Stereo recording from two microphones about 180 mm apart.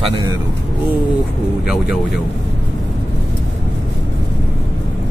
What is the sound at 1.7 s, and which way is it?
Speech, 5° right (ahead or behind).